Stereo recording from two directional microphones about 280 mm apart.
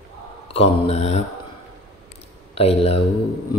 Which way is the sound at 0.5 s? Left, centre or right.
Left.